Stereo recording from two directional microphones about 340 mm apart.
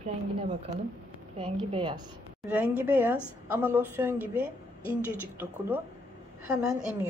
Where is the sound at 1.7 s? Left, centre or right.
Centre.